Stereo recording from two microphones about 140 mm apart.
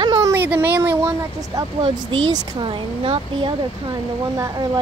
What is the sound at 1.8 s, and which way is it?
Speech, 40° right (ahead or behind).